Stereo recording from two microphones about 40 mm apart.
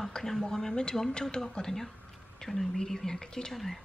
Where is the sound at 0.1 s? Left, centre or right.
Centre.